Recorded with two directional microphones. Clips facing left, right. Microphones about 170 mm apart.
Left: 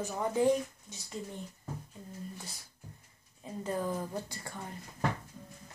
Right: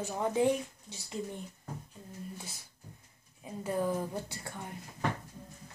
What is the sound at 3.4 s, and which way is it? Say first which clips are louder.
A woman's voice: right 2 dB; 10° right (ahead or behind).